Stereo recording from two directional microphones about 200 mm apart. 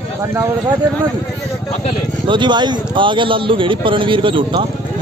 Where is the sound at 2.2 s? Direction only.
25° right (ahead or behind).